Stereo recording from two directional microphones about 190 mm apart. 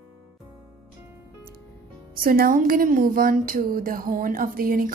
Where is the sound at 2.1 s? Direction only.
50° right (ahead or behind).